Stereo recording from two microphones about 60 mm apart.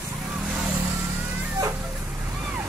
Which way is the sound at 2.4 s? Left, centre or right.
Right.